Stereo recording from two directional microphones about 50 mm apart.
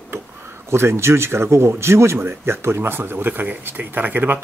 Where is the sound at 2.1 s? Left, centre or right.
Right.